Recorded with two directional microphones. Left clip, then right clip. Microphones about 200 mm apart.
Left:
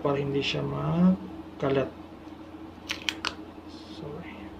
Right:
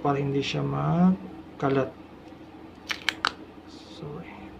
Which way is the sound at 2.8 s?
20° right (ahead or behind).